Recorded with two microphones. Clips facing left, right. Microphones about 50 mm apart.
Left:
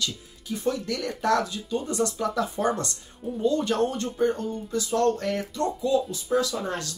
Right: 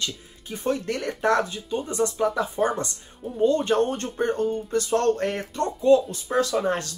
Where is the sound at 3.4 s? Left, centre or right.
Right.